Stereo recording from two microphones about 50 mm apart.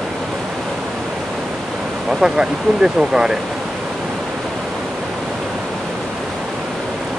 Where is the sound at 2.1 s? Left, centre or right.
Centre.